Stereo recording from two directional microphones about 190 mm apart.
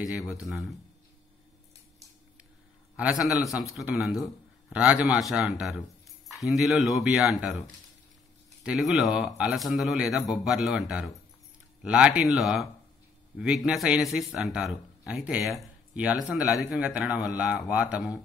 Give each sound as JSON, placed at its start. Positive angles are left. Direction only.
{"t": 0.2, "sound": "speech", "side_deg": 0}
{"t": 3.0, "sound": "speech", "side_deg": -5}
{"t": 8.6, "sound": "speech", "side_deg": 0}